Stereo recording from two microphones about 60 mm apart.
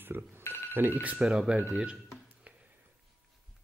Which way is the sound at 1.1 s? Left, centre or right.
Centre.